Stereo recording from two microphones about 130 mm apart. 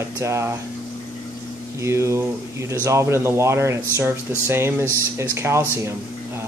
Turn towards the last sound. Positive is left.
turn(degrees=-20)  # may be behind; listen again after turning